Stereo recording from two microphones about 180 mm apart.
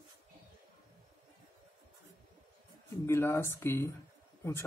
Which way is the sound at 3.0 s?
15° left (ahead or behind).